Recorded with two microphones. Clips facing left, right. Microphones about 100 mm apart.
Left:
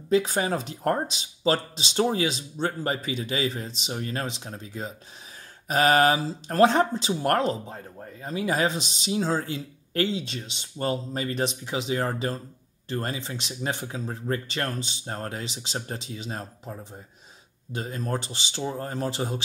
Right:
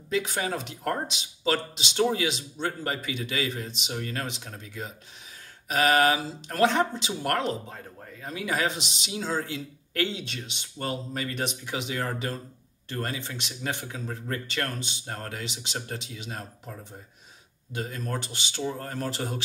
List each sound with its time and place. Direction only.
0.1 s speech: 40° left (ahead or behind)
17.7 s speech: 30° left (ahead or behind)